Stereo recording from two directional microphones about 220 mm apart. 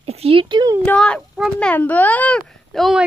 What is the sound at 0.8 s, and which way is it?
A child's voice, 5° left (ahead or behind).